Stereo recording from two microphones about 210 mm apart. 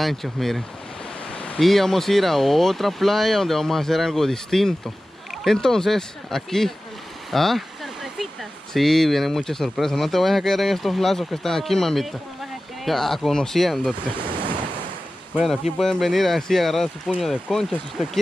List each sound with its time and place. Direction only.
0.0 s speech: centre (ahead or behind)
14.1 s speech: 25° right (ahead or behind)
15.3 s speech: centre (ahead or behind)